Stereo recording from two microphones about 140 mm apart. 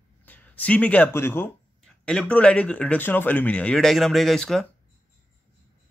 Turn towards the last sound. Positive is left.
turn(degrees=5)  # may be behind; listen again after turning